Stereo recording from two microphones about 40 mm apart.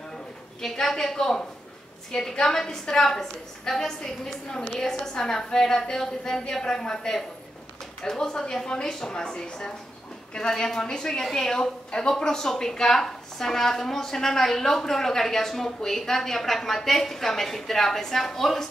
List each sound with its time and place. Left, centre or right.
0.6 s speech: centre